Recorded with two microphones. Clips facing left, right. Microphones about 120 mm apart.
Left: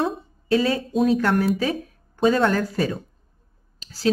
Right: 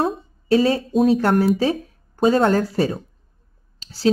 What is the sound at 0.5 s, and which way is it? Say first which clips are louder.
Speech: right 4 dB; 35° right (ahead or behind).